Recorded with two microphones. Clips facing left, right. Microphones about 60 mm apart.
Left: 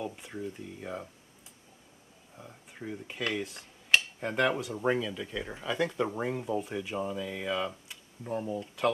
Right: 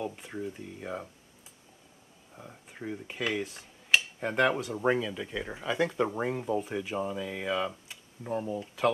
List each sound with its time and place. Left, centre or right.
0.0 s speech: centre
2.3 s speech: centre